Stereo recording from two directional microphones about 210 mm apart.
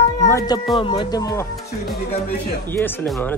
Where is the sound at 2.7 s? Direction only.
10° left (ahead or behind).